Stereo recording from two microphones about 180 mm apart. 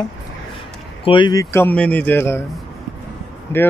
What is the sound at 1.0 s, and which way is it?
Speech, 25° left (ahead or behind).